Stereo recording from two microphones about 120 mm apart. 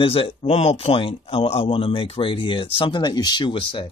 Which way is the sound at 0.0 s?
50° left (ahead or behind).